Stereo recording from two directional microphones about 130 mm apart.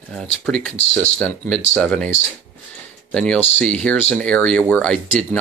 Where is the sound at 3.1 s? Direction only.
5° left (ahead or behind).